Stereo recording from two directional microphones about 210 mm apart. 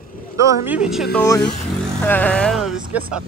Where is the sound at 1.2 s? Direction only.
10° left (ahead or behind); by 3.2 s 5° right (ahead or behind).